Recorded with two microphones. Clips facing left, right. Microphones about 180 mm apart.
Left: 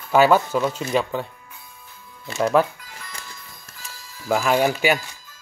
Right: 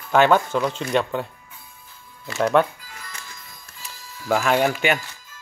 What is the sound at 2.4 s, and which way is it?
Speech, 5° left (ahead or behind).